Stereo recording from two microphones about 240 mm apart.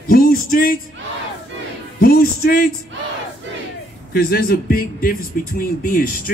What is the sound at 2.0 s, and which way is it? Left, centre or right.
Speech, left.